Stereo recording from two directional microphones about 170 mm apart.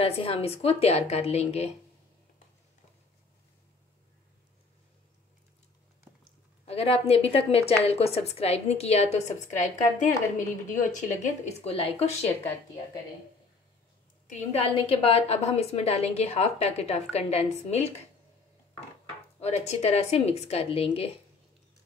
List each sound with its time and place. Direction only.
0.0 s a woman's voice: 35° left (ahead or behind)
6.6 s a woman's voice: 35° left (ahead or behind)
11.6 s a woman's voice: 35° left (ahead or behind)
14.5 s a woman's voice: 35° left (ahead or behind)
19.4 s a woman's voice: 40° left (ahead or behind)